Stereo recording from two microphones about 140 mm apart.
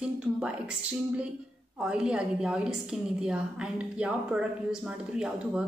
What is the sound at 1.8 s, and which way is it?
A woman's voice, 5° right (ahead or behind).